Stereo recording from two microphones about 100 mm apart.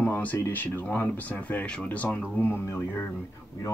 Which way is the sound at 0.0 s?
15° left (ahead or behind).